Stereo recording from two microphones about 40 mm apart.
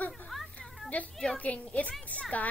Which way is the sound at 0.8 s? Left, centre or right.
Left.